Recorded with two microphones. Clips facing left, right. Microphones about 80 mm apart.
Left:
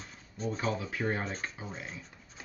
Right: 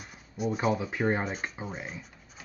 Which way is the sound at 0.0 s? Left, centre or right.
Centre.